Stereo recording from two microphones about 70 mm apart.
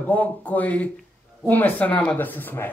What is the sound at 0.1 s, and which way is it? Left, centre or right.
A man's voice, left.